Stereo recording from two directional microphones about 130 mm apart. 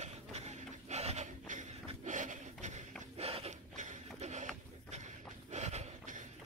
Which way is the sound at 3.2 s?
50° right (ahead or behind).